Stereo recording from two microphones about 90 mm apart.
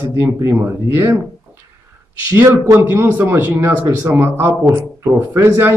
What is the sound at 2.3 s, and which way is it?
Speech, 25° right (ahead or behind).